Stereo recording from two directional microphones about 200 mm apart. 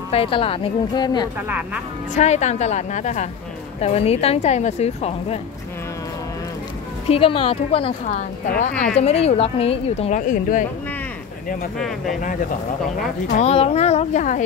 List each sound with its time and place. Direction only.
0.1 s a woman's voice: 30° left (ahead or behind)
2.1 s a woman's voice: 35° left (ahead or behind)
7.1 s a woman's voice: 25° left (ahead or behind)
12.2 s a woman's voice: 40° left (ahead or behind)